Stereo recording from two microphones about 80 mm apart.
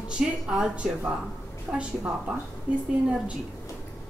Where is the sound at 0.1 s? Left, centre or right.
Centre.